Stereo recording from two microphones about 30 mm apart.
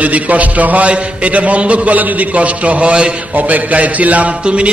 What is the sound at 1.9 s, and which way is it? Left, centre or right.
Speech, right.